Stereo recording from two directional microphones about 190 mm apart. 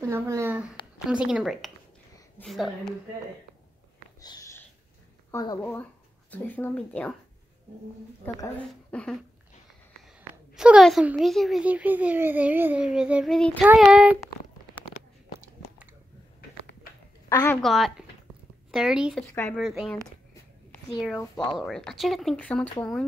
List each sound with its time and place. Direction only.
0.0 s a woman's voice: 15° right (ahead or behind); by 2.9 s centre (ahead or behind)
4.2 s sniff: 20° left (ahead or behind)
5.3 s speech: 20° left (ahead or behind)
8.2 s a woman's voice: 10° left (ahead or behind)
17.3 s a woman's voice: 20° left (ahead or behind)
17.6 s a woman's voice: centre (ahead or behind)
21.2 s speech: 20° left (ahead or behind)
21.5 s a woman's voice: centre (ahead or behind)